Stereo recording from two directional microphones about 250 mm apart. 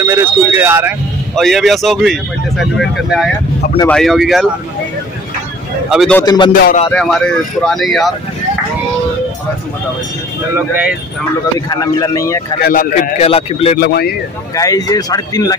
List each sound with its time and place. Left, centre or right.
0.0 s speech: centre
5.9 s speech: centre
6.2 s speech: centre
6.9 s speech: centre
10.5 s speech: centre
11.7 s speech: centre
12.6 s a man's voice: left
13.7 s speech: left
14.5 s speech: centre